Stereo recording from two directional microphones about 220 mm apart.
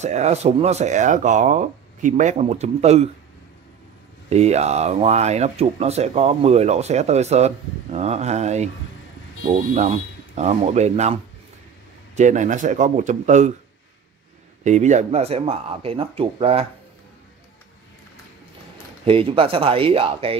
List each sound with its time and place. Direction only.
0.0 s speech: 30° right (ahead or behind)
4.3 s speech: 30° right (ahead or behind)
12.2 s speech: 35° right (ahead or behind)
14.6 s speech: 30° right (ahead or behind)
19.0 s speech: 25° right (ahead or behind)